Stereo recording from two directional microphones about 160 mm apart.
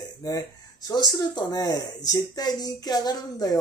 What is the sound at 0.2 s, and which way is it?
Speech, 20° left (ahead or behind).